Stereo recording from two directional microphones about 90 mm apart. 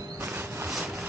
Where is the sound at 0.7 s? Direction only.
5° right (ahead or behind).